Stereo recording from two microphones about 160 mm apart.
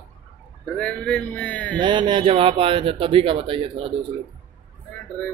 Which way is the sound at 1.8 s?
30° right (ahead or behind).